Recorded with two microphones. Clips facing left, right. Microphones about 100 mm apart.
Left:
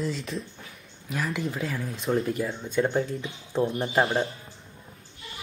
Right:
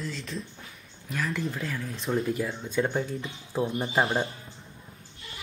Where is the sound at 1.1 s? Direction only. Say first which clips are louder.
Left 1 dB; 5° left (ahead or behind).